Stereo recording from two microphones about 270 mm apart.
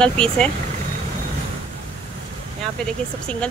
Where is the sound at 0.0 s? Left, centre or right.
Centre.